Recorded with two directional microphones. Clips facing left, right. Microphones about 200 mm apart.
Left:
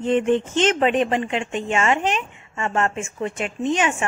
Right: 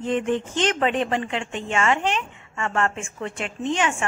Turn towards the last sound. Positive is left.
turn(degrees=20)  # may be behind; listen again after turning